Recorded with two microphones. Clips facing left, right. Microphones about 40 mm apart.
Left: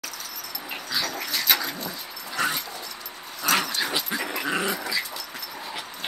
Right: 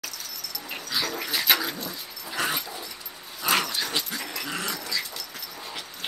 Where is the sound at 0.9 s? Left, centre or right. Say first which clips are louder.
Even; centre.